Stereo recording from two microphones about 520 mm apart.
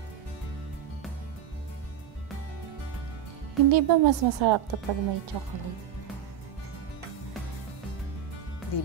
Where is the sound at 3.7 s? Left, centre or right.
Right.